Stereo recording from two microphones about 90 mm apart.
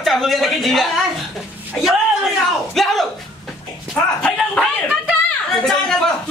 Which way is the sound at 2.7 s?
Centre (ahead or behind).